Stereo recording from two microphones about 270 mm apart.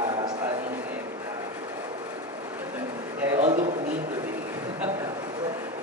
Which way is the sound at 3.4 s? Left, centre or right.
Right.